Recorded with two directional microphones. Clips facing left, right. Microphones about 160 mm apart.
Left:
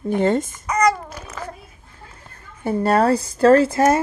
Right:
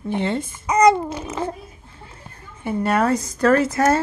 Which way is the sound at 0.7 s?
25° right (ahead or behind).